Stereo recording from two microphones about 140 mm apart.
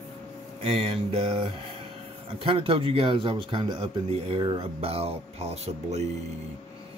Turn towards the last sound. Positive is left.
turn(degrees=-50)  # may be behind; listen again after turning